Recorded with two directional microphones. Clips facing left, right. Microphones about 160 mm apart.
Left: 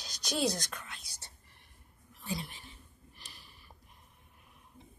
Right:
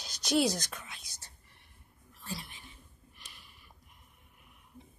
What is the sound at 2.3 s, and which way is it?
Whispering, 35° left (ahead or behind).